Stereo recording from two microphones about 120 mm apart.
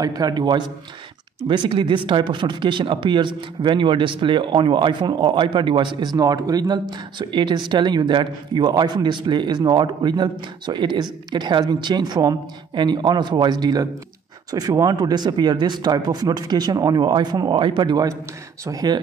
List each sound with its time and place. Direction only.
0.0 s speech: 35° right (ahead or behind)
1.7 s speech: 45° right (ahead or behind)